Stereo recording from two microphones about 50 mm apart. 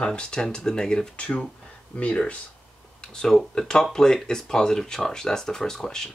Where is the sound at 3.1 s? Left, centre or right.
Centre.